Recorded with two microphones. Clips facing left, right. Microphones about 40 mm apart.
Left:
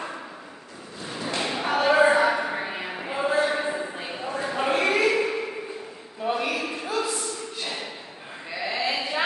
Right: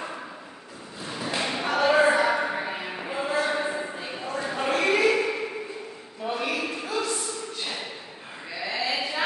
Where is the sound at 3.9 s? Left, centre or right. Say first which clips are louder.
Left 1 dB; centre.